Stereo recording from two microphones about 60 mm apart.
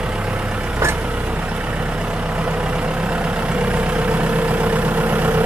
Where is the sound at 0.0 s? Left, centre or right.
Centre.